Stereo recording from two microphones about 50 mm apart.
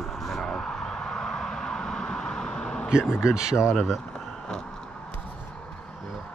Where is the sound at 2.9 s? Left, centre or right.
Centre.